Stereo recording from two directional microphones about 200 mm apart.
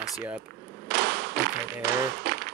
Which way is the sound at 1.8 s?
60° right (ahead or behind).